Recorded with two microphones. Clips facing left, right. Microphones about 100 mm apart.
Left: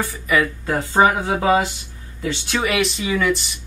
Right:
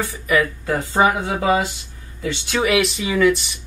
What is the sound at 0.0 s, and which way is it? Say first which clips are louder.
Speech: even; centre (ahead or behind).